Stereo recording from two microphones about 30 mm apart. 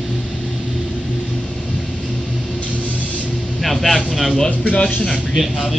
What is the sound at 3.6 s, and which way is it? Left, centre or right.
Vehicle, centre.